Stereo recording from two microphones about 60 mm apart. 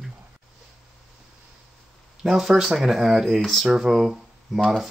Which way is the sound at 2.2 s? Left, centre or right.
Centre.